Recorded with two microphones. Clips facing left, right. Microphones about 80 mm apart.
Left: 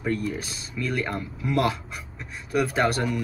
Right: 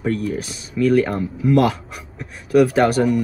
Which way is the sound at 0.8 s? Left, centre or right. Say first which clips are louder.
Right 12 dB; centre.